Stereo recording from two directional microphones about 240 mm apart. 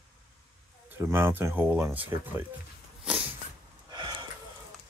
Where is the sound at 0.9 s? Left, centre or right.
Centre.